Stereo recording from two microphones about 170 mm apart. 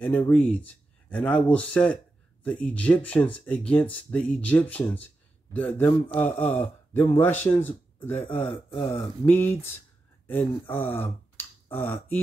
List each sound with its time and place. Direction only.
0.0 s speech: 10° left (ahead or behind)